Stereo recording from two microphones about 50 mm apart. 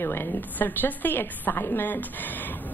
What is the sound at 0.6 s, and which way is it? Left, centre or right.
A woman's voice, left.